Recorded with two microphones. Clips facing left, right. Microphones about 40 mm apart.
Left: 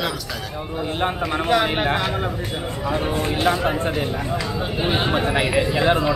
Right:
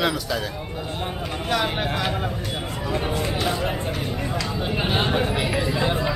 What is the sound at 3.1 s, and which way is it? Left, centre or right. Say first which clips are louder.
Speech: left 4 dB; left.